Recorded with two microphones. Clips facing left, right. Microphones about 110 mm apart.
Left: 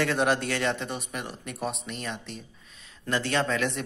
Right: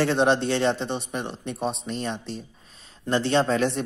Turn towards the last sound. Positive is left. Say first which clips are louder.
# right 5 dB
turn(degrees=-30)  # may be behind; listen again after turning